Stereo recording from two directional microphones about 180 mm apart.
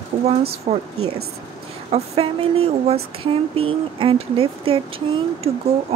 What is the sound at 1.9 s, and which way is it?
Speech, 30° right (ahead or behind).